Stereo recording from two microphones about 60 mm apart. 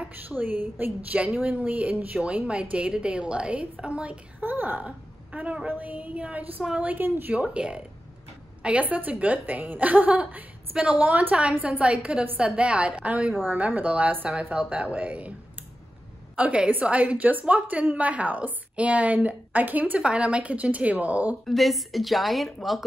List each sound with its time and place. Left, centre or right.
0.0 s a woman's voice: right
4.4 s a woman's voice: right
7.3 s a woman's voice: centre
16.3 s a woman's voice: right
21.5 s a woman's voice: centre